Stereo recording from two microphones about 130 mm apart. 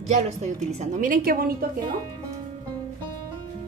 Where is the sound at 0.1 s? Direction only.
65° right (ahead or behind); by 1.7 s 90° right.